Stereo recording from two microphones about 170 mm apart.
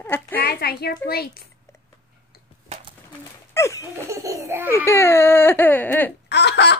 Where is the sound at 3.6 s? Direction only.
15° left (ahead or behind).